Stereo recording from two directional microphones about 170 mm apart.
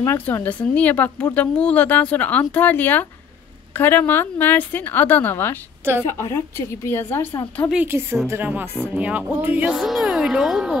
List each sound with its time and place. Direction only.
0.0 s a woman's voice: 10° left (ahead or behind)
7.7 s music: 10° right (ahead or behind)
9.8 s speech: centre (ahead or behind)